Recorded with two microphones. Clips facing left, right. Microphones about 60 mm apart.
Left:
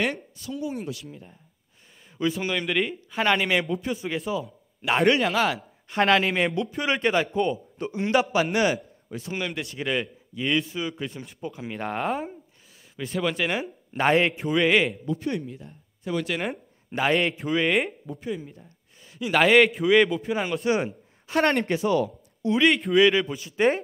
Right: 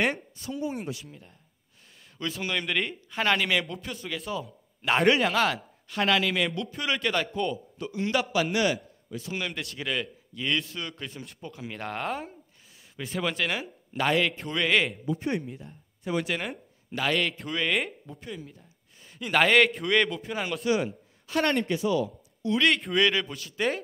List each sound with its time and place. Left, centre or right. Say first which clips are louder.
0.6 s speech: left 1 dB; right
2.1 s a man's voice: left 5 dB; centre
5.9 s a man's voice: left 4 dB; left
9.3 s a man's voice: left 3 dB; centre
13.4 s a man's voice: left 3 dB; centre
13.9 s speech: left 4 dB; left
14.3 s a man's voice: left 4 dB; centre
15.1 s speech: right 2 dB; right
15.4 s speech: left 2 dB; centre
16.9 s a man's voice: left 4 dB; left
17.4 s a man's voice: left 5 dB; centre
20.6 s a woman's voice: left 2 dB; left
21.5 s speech: left 2 dB; left
22.5 s a man's voice: left 4 dB; centre